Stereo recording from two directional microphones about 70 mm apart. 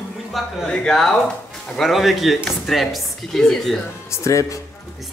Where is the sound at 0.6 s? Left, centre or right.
Centre.